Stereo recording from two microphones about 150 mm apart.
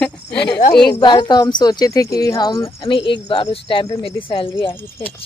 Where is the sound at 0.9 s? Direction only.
30° left (ahead or behind).